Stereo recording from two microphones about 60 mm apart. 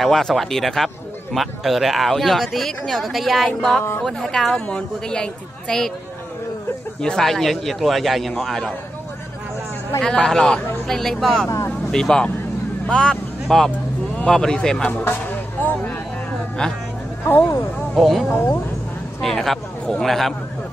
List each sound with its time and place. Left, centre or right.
0.0 s a man's voice: centre
7.0 s a man's voice: centre
10.0 s a man's voice: centre
11.4 s speech: left
11.9 s speech: centre
12.8 s vehicle: centre
14.2 s speech: centre
15.6 s a sound: left
17.2 s speech: left
17.9 s a man's voice: centre
19.2 s a man's voice: centre